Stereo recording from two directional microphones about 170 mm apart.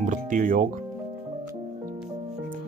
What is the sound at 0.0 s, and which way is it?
Music, 45° right (ahead or behind).